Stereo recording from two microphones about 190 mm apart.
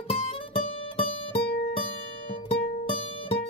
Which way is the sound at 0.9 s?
30° left (ahead or behind).